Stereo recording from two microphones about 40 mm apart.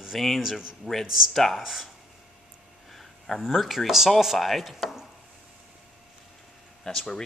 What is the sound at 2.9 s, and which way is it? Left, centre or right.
Speech, centre.